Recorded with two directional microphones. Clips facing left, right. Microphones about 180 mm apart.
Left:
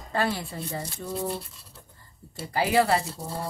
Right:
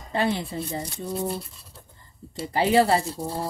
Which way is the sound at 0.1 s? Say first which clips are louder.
Right 3 dB; 20° right (ahead or behind).